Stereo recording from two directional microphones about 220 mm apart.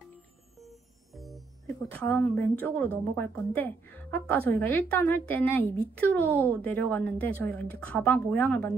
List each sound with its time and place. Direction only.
0.6 s music: centre (ahead or behind)
2.0 s a woman's voice: 10° left (ahead or behind)